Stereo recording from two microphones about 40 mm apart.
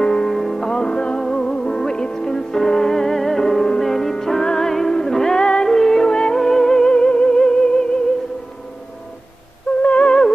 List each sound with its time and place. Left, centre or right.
0.0 s music: centre
0.3 s music: centre
0.7 s music: centre
6.9 s music: left
9.8 s music: left